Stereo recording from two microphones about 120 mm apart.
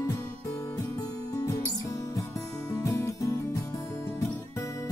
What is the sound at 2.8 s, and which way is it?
Music, 25° left (ahead or behind).